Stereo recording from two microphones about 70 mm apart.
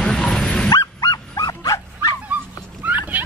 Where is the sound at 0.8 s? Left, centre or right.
Left.